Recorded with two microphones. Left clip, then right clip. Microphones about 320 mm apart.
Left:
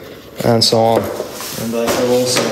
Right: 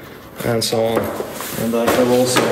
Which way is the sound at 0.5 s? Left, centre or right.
Left.